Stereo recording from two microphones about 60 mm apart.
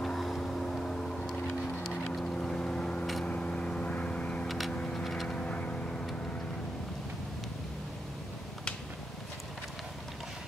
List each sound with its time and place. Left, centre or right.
0.0 s vehicle: centre
1.5 s a sound: centre
2.1 s boat: centre
3.3 s vehicle: centre
4.5 s a sound: centre
4.7 s vehicle: centre
5.3 s vehicle: centre